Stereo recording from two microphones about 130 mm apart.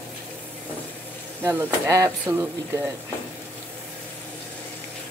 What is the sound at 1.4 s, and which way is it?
Speech, 15° right (ahead or behind).